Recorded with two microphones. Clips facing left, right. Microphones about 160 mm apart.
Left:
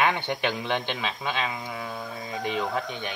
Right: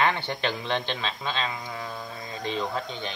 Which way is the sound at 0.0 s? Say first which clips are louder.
Left 1 dB; 15° left (ahead or behind).